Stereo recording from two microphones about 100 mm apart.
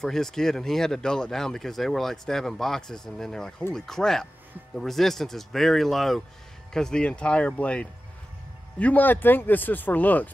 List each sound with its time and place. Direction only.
0.0 s speech: 5° left (ahead or behind)